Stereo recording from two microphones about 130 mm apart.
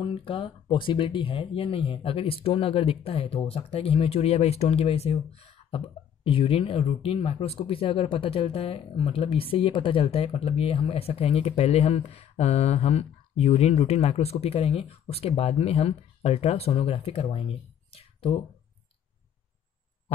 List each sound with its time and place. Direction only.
0.0 s speech: 45° left (ahead or behind)